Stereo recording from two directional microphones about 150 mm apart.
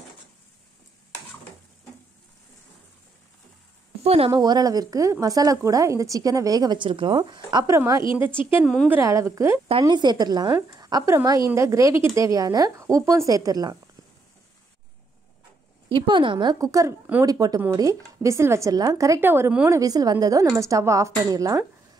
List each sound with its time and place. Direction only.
4.0 s a woman's voice: 40° right (ahead or behind)
4.3 s a woman's voice: 25° right (ahead or behind)
8.0 s a woman's voice: 35° left (ahead or behind)
8.8 s a woman's voice: 15° right (ahead or behind)
9.7 s a woman's voice: 35° right (ahead or behind)
15.9 s a woman's voice: 35° right (ahead or behind); by 19.8 s 15° right (ahead or behind)
19.8 s a woman's voice: 25° right (ahead or behind)